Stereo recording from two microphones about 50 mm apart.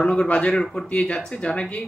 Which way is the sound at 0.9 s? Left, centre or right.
Left.